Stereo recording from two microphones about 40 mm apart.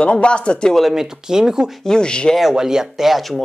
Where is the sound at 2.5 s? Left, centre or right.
Centre.